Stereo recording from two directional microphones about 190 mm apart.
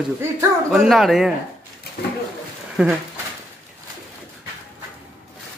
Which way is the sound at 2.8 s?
5° right (ahead or behind).